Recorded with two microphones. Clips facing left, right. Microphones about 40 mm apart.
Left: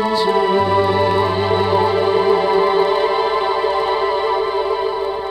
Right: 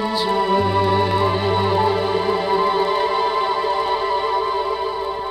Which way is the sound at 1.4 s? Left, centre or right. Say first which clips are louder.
Left 2 dB; left.